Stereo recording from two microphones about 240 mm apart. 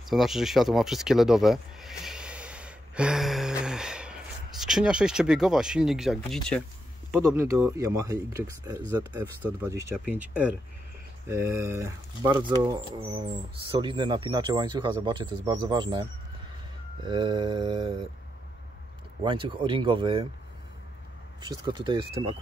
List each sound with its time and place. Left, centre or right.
0.1 s sheep: centre
7.1 s speech: centre
19.2 s speech: right
21.4 s speech: centre